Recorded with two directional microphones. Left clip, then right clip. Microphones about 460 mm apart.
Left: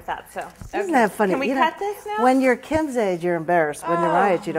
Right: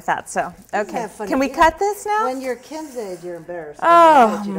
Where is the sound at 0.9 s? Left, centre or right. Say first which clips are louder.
Left 8 dB; left.